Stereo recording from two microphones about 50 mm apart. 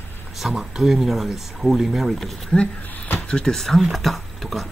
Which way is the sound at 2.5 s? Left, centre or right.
Left.